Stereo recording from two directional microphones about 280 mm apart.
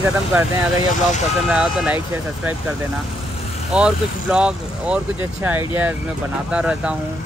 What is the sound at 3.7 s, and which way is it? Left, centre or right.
Speech, centre.